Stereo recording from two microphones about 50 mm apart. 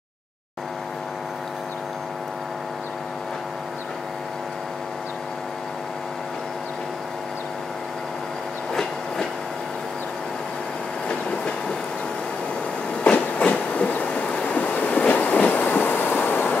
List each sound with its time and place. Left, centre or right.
11.1 s train: left
13.0 s train: left